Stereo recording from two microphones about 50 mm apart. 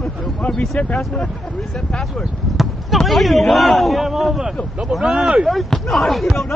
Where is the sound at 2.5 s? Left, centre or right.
Centre.